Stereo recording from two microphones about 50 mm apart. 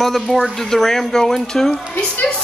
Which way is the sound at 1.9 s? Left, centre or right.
Left.